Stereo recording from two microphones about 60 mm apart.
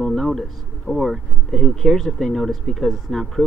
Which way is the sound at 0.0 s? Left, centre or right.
Centre.